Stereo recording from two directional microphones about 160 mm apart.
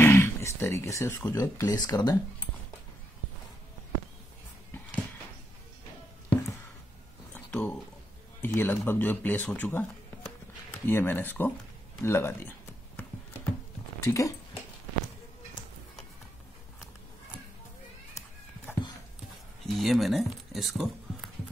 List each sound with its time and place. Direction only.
0.0 s speech: 15° left (ahead or behind)
7.3 s a sound: 10° left (ahead or behind)
8.4 s speech: 15° left (ahead or behind)
12.0 s a sound: 15° left (ahead or behind)
14.0 s dog: 20° left (ahead or behind)
19.6 s speech: centre (ahead or behind)